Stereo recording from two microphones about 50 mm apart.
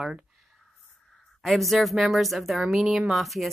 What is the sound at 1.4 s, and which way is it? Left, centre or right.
A woman's voice, centre.